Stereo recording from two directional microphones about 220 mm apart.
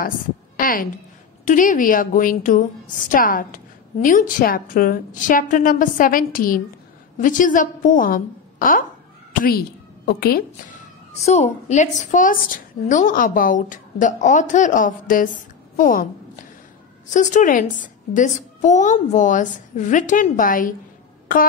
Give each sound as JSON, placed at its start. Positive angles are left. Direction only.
{"t": 0.6, "sound": "a sound", "side_deg": 40}
{"t": 1.4, "sound": "a woman's voice", "side_deg": 35}
{"t": 11.2, "sound": "a woman's voice", "side_deg": 30}
{"t": 17.1, "sound": "a woman's voice", "side_deg": 35}